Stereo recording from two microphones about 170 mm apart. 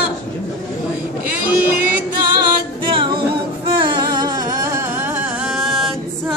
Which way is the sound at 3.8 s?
25° right (ahead or behind).